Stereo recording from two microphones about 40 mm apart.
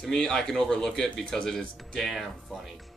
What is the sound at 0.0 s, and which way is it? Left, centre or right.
Speech, centre.